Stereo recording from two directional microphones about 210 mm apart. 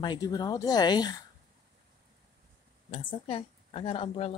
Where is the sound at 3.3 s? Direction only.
25° left (ahead or behind).